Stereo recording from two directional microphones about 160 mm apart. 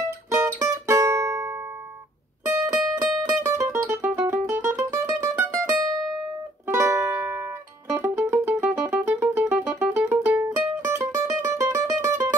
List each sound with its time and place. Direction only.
0.3 s music: 15° right (ahead or behind)
6.7 s music: 20° right (ahead or behind)